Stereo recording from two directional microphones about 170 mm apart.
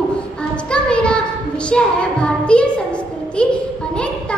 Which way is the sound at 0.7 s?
5° left (ahead or behind).